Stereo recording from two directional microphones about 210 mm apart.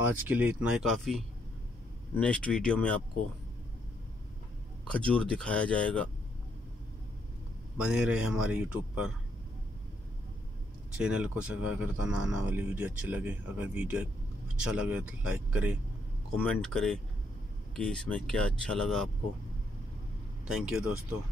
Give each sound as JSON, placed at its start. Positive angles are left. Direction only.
{"t": 0.0, "sound": "speech", "side_deg": -5}
{"t": 4.8, "sound": "speech", "side_deg": 5}
{"t": 7.8, "sound": "speech", "side_deg": -5}
{"t": 11.0, "sound": "speech", "side_deg": -5}
{"t": 20.4, "sound": "speech", "side_deg": 0}